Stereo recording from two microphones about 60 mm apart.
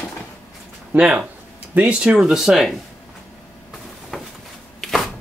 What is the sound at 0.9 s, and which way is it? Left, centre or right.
Speech, centre.